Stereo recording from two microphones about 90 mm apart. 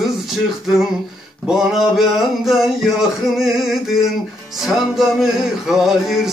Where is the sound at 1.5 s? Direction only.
5° right (ahead or behind).